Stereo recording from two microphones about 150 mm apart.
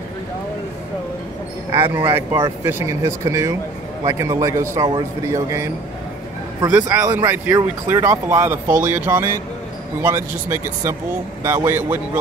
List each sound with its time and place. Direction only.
1.7 s a man's voice: 15° right (ahead or behind)
6.7 s speech: 15° right (ahead or behind)